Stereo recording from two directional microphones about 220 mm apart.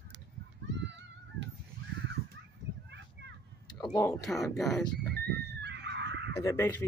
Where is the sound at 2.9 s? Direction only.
50° right (ahead or behind).